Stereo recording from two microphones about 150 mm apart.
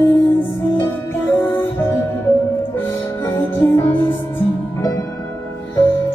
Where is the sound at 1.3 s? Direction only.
15° left (ahead or behind).